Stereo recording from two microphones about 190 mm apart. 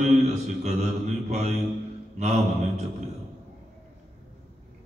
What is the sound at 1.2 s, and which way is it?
Mantra, 35° right (ahead or behind).